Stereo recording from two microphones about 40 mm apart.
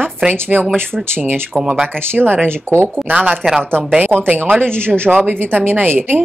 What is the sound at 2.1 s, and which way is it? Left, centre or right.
Speech, right.